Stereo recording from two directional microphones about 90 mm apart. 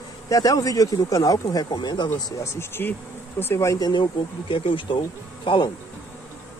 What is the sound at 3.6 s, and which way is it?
Speech, 45° left (ahead or behind).